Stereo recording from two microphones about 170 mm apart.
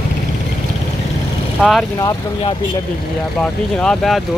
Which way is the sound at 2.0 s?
25° left (ahead or behind).